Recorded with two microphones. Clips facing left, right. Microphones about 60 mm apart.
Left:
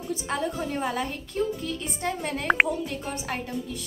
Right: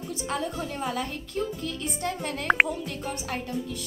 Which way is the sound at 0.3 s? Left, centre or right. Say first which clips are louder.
Left 2 dB; left.